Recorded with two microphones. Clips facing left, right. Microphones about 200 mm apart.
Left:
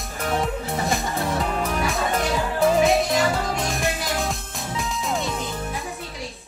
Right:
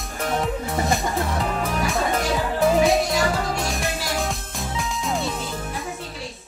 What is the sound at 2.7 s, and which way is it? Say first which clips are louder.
Music: even; centre (ahead or behind).